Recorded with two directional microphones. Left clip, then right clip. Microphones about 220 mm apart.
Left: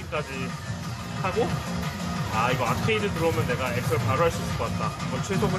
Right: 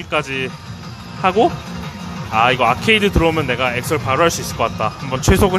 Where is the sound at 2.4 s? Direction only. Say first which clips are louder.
Right 12 dB; 50° right (ahead or behind).